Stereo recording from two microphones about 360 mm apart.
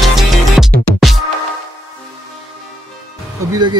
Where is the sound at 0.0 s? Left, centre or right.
Centre.